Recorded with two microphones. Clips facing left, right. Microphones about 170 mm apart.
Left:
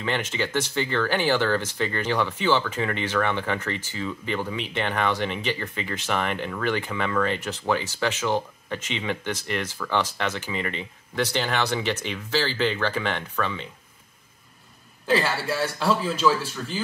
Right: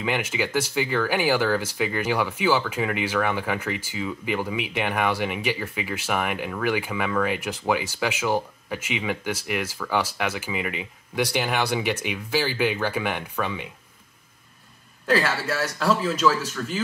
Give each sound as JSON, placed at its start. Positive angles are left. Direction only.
{"t": 0.0, "sound": "speech", "side_deg": -10}
{"t": 15.4, "sound": "speech", "side_deg": 30}
{"t": 15.8, "sound": "speech", "side_deg": 0}